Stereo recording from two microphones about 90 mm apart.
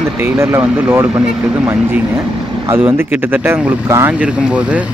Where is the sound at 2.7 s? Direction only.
25° right (ahead or behind).